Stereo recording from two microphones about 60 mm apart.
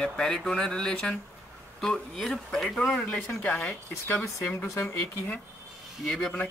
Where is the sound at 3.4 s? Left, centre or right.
Left.